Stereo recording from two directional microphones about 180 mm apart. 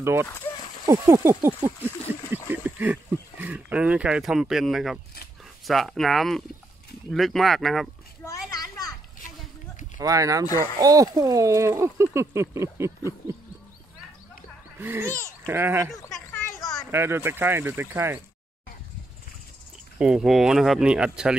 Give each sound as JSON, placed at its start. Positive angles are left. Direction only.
{"t": 0.0, "sound": "speech", "side_deg": -15}
{"t": 9.9, "sound": "speech", "side_deg": -20}
{"t": 14.8, "sound": "speech", "side_deg": -15}
{"t": 16.4, "sound": "a sound", "side_deg": 20}
{"t": 16.9, "sound": "speech", "side_deg": -15}
{"t": 20.0, "sound": "speech", "side_deg": -5}